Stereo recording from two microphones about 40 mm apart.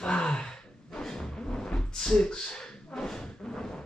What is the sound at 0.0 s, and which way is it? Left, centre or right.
Gasp, left.